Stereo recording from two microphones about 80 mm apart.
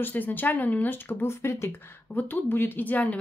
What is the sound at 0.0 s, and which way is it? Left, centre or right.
Speech, left.